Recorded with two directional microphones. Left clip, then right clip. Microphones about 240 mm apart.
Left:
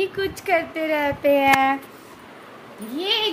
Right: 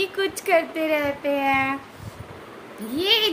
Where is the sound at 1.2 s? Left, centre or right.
Left.